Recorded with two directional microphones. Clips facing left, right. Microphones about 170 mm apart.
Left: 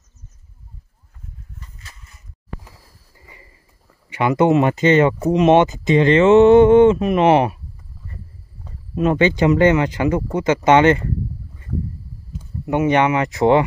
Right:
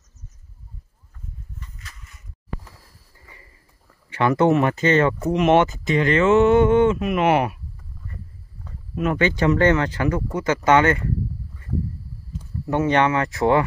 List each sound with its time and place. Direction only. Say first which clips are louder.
1.8 s a sound: even; 30° left (ahead or behind)
2.6 s sniff: left 1 dB; 15° left (ahead or behind)
3.8 s speech: left 1 dB; 15° left (ahead or behind)
8.6 s speech: left 5 dB; 25° left (ahead or behind)
12.6 s speech: left 3 dB; 15° left (ahead or behind)